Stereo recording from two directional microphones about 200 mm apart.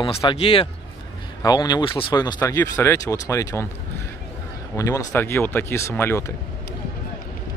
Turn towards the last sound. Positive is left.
turn(degrees=10)  # may be behind; listen again after turning